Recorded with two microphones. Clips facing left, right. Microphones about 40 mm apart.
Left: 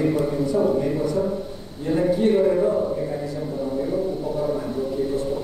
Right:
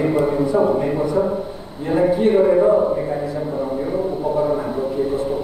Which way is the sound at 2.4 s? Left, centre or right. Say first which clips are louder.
Right 6 dB; right.